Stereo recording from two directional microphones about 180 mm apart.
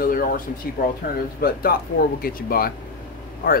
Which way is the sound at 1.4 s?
55° left (ahead or behind).